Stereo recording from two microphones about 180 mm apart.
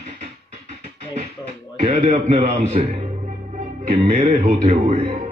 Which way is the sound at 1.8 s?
40° right (ahead or behind).